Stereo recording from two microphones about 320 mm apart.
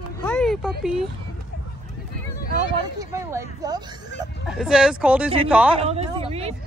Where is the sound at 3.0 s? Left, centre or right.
Centre.